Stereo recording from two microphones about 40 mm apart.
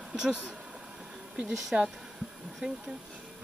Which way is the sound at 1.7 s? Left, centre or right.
Centre.